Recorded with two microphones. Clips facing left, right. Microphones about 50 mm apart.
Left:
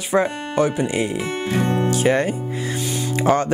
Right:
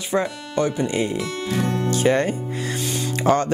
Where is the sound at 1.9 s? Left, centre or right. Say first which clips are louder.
Right 2 dB; centre.